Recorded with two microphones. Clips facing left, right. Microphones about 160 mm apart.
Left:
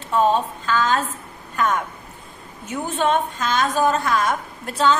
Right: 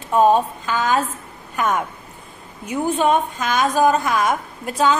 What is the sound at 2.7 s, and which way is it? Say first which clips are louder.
A woman's voice: right 3 dB; 15° right (ahead or behind).